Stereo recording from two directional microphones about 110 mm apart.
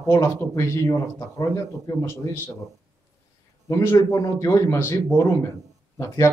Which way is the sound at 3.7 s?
25° left (ahead or behind).